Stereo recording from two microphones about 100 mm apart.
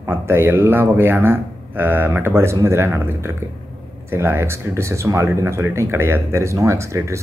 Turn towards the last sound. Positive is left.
turn(degrees=-30)  # may be behind; listen again after turning